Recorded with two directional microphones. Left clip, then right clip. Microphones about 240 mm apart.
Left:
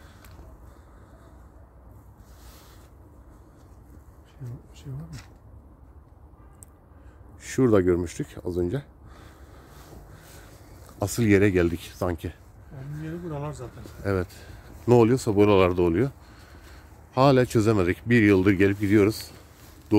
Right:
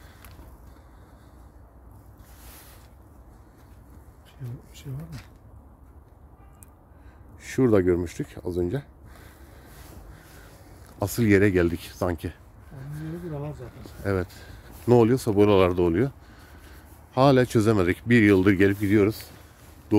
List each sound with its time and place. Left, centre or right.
7.4 s speech: centre
11.0 s speech: centre
13.3 s a sound: centre
13.8 s speech: centre